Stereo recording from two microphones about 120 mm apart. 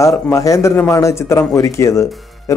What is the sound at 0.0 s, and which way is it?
Speech, 25° left (ahead or behind).